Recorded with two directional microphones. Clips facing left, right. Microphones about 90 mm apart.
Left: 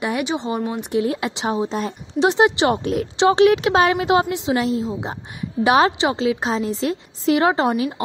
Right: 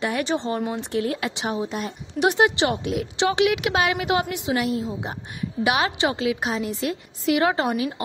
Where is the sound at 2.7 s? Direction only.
40° left (ahead or behind).